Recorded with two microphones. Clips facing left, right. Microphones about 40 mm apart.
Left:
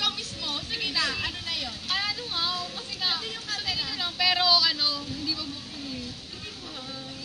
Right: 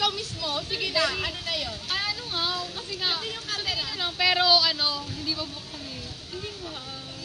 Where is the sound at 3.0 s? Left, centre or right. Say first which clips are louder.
Even; centre.